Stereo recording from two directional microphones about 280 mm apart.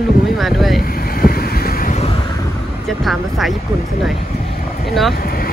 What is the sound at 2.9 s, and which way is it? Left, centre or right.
Speech, centre.